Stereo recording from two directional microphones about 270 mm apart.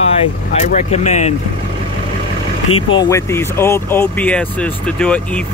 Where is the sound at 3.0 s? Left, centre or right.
Centre.